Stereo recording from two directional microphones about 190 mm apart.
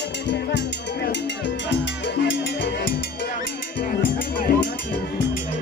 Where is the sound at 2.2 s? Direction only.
70° left (ahead or behind).